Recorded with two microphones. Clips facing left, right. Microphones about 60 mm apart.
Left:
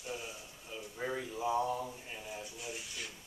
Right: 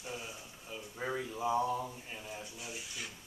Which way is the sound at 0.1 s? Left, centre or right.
Centre.